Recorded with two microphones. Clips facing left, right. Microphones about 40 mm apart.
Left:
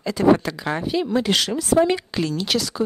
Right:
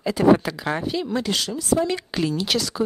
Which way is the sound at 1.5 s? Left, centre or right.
Left.